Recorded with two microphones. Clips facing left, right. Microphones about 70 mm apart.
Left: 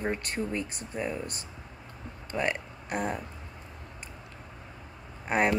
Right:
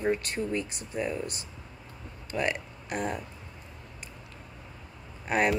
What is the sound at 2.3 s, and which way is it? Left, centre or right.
Speech, left.